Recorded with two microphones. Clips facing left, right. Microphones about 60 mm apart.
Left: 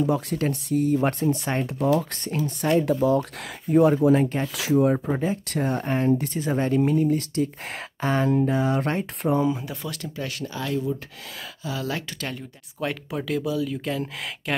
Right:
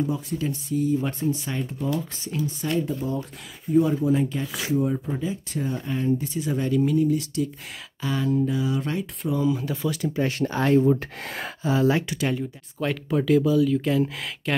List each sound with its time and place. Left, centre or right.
0.0 s speech: left
2.8 s speech: left
3.7 s speech: left
4.6 s speech: left
9.7 s speech: centre
10.4 s speech: right
11.6 s speech: right
12.1 s speech: centre
12.8 s speech: centre